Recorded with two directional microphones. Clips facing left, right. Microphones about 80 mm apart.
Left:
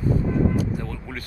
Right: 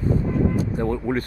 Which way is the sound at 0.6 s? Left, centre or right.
Right.